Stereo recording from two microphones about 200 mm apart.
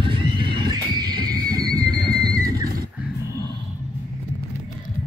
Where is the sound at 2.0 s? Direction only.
20° right (ahead or behind).